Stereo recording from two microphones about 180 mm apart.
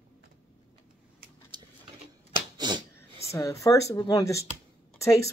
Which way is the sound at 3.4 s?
20° left (ahead or behind).